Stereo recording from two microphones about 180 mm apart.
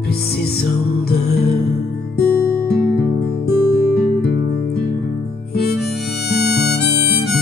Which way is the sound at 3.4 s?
60° left (ahead or behind).